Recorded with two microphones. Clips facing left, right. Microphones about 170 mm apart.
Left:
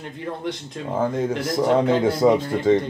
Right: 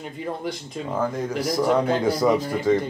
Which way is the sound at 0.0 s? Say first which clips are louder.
Even; 5° right (ahead or behind).